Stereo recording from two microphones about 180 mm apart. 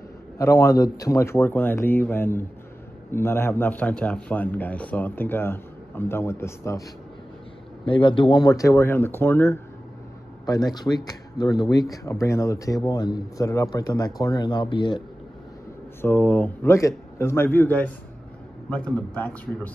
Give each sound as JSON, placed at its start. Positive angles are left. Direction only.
{"t": 0.4, "sound": "speech", "side_deg": 15}
{"t": 7.8, "sound": "a man's voice", "side_deg": 30}
{"t": 16.0, "sound": "speech", "side_deg": 10}